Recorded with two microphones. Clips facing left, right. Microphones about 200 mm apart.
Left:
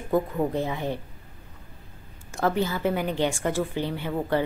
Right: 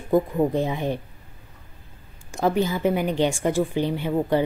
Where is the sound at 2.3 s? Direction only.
15° right (ahead or behind).